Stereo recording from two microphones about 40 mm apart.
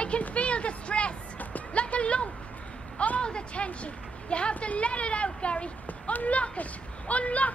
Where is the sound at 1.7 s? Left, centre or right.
Left.